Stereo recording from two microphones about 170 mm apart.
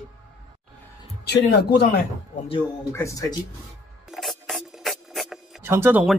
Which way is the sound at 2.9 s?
20° left (ahead or behind).